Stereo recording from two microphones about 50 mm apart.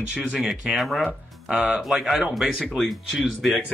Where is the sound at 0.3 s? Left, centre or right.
Centre.